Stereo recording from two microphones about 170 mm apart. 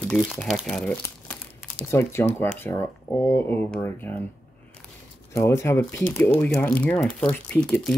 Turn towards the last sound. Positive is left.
turn(degrees=5)  # may be behind; listen again after turning